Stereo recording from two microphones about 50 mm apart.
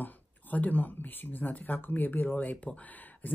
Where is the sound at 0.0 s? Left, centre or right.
Left.